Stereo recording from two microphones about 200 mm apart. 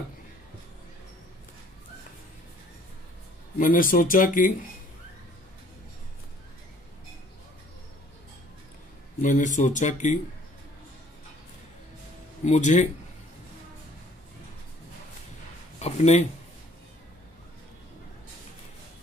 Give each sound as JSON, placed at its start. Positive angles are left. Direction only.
{"t": 3.5, "sound": "speech", "side_deg": 40}
{"t": 9.2, "sound": "speech", "side_deg": 40}
{"t": 12.4, "sound": "speech", "side_deg": 35}
{"t": 15.8, "sound": "a sound", "side_deg": 35}